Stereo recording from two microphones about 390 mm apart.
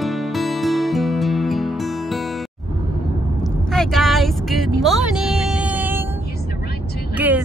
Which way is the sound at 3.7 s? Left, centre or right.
Centre.